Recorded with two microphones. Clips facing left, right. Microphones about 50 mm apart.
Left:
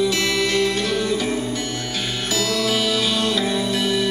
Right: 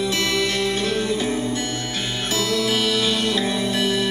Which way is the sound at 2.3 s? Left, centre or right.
Right.